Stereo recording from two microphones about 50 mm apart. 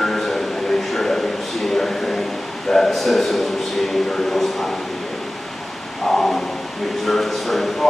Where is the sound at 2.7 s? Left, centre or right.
Centre.